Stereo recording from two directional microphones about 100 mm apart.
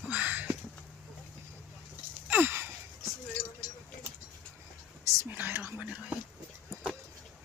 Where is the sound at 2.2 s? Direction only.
20° right (ahead or behind).